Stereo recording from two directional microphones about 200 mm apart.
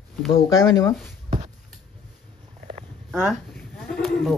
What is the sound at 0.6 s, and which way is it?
Speech, 15° left (ahead or behind).